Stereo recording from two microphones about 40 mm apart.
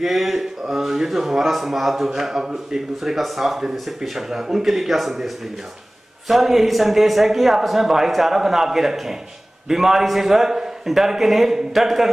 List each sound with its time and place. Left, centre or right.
0.0 s a man's voice: centre